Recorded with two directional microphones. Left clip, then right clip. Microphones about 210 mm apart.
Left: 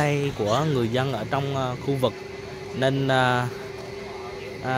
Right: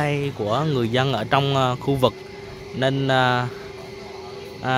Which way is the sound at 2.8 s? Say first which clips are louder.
Right 2 dB; 10° right (ahead or behind).